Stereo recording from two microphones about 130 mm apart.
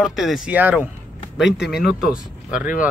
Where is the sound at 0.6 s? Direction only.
15° right (ahead or behind).